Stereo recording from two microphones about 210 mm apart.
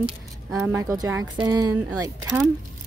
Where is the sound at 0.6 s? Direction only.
10° right (ahead or behind).